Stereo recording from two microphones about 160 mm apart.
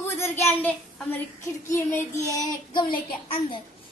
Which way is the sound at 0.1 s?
15° left (ahead or behind).